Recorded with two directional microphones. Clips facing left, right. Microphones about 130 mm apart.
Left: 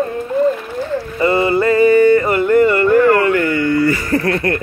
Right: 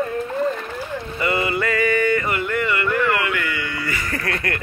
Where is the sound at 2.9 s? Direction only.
40° left (ahead or behind).